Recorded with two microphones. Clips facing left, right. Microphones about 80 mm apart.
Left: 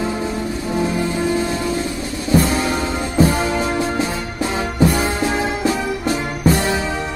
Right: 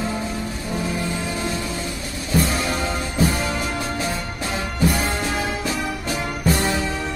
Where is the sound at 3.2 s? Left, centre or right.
Left.